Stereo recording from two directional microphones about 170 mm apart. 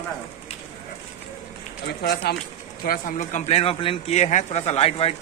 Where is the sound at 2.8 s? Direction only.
55° left (ahead or behind).